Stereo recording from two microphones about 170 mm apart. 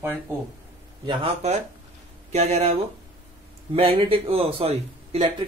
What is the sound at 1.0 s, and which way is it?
Speech, 35° right (ahead or behind).